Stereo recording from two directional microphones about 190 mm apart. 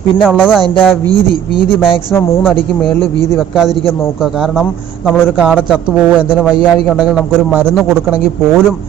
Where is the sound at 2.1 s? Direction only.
15° left (ahead or behind).